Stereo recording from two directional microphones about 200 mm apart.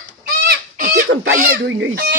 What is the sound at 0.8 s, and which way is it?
Goose, 45° right (ahead or behind).